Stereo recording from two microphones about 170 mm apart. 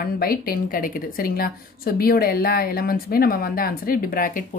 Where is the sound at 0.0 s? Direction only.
60° left (ahead or behind).